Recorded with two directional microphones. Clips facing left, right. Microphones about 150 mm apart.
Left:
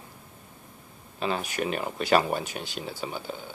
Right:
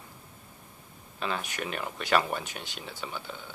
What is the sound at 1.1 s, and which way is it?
Speech, 35° left (ahead or behind).